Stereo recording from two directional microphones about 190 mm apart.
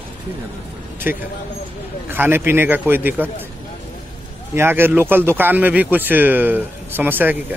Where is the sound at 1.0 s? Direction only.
10° right (ahead or behind).